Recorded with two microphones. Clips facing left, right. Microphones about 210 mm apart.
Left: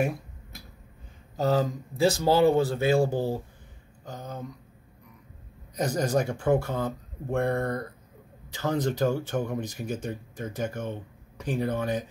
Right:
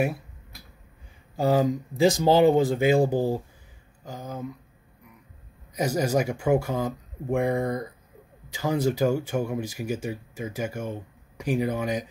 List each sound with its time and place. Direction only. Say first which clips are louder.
1.3 s speech: right 3 dB; 10° right (ahead or behind)
5.8 s speech: right 2 dB; 10° right (ahead or behind)